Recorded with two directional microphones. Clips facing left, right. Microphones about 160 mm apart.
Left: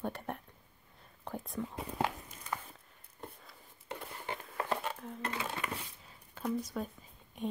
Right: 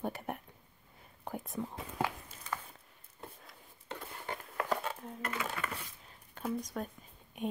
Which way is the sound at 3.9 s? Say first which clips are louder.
Left 1 dB; 20° left (ahead or behind).